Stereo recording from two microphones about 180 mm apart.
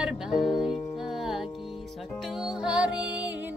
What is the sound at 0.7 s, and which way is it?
Music, 30° left (ahead or behind).